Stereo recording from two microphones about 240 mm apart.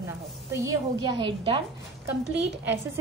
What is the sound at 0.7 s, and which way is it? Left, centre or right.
Speech, centre.